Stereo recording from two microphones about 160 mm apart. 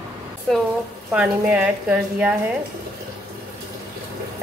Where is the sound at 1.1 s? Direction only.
5° right (ahead or behind).